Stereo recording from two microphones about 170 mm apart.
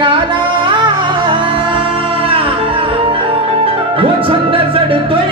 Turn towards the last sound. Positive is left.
turn(degrees=-30)  # may be behind; listen again after turning